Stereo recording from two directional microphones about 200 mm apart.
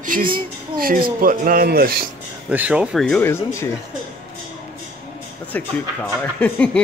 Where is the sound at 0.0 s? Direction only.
45° right (ahead or behind).